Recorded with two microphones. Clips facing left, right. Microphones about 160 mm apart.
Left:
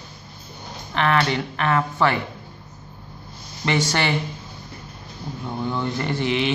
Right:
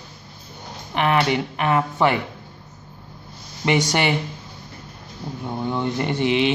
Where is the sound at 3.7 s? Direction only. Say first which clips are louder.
Right 2 dB; 15° right (ahead or behind).